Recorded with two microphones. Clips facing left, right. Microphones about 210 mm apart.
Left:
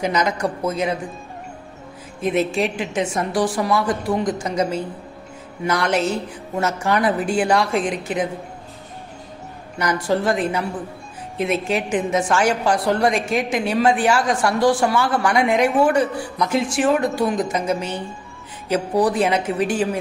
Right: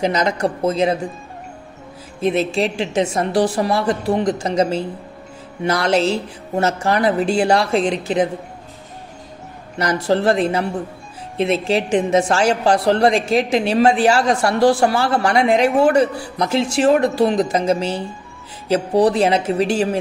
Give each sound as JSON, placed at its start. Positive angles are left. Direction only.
{"t": 0.0, "sound": "speech", "side_deg": -30}
{"t": 2.2, "sound": "speech", "side_deg": -30}
{"t": 9.8, "sound": "a woman's voice", "side_deg": -30}